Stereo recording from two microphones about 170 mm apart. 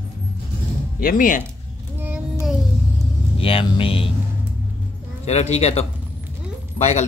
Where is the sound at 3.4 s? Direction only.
35° left (ahead or behind).